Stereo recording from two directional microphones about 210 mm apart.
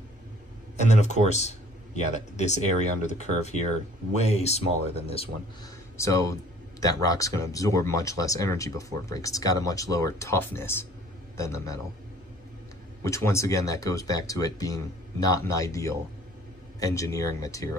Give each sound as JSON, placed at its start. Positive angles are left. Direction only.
{"t": 0.7, "sound": "speech", "side_deg": 35}
{"t": 5.9, "sound": "speech", "side_deg": 15}
{"t": 13.0, "sound": "speech", "side_deg": 15}